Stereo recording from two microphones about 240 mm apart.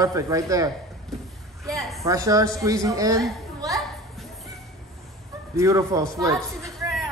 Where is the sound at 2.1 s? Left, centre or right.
Centre.